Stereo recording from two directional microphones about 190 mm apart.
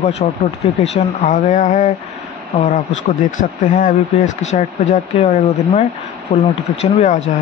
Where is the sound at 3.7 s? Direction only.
45° left (ahead or behind).